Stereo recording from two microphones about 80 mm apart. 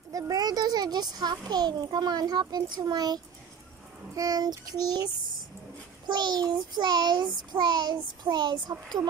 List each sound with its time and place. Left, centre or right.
0.1 s a child's voice: right
4.1 s child singing: right
6.0 s child singing: right